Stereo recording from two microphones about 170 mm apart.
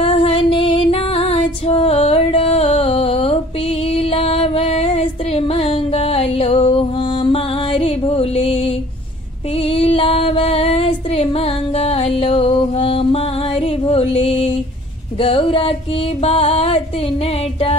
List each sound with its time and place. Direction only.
0.0 s music: 35° left (ahead or behind)
15.1 s a sound: 30° left (ahead or behind)
16.2 s music: 35° left (ahead or behind)